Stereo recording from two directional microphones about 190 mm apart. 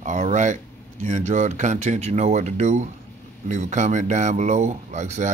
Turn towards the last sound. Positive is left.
turn(degrees=-40)  # may be behind; listen again after turning